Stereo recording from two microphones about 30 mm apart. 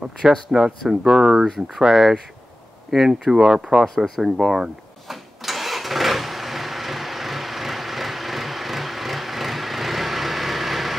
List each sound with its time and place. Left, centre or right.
0.3 s speech: right
3.8 s speech: centre
4.2 s speech: centre
5.0 s vehicle: centre